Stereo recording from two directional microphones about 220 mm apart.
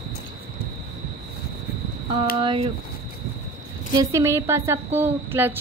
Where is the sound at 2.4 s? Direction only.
25° right (ahead or behind).